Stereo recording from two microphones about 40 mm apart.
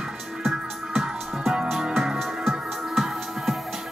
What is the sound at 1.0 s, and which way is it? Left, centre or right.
Music, centre.